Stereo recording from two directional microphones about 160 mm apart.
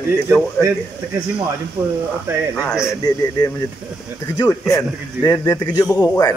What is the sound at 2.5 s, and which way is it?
Speech, 5° right (ahead or behind).